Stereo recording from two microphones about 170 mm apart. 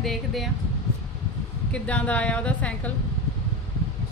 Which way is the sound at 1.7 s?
5° left (ahead or behind).